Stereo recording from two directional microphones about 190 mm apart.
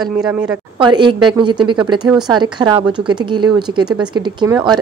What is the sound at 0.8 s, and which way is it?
A woman's voice, 25° right (ahead or behind).